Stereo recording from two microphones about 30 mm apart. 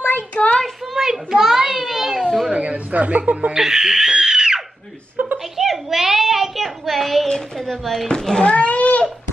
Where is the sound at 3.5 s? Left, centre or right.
Centre.